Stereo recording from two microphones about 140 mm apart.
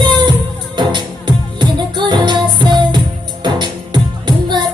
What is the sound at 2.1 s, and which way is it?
Music, 35° right (ahead or behind).